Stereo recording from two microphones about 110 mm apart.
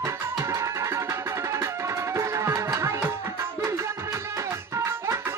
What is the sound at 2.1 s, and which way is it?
Music, 30° right (ahead or behind).